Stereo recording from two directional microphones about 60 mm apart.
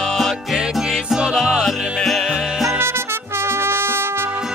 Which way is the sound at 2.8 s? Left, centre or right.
Right.